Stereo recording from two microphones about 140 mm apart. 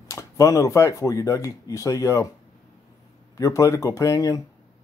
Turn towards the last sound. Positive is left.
turn(degrees=25)  # may be behind; listen again after turning